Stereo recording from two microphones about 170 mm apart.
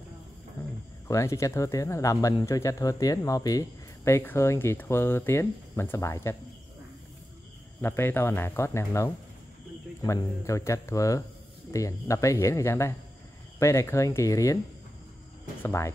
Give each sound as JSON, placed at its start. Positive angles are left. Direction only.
{"t": 1.0, "sound": "speech", "side_deg": 20}
{"t": 7.8, "sound": "speech", "side_deg": 15}
{"t": 15.6, "sound": "speech", "side_deg": 15}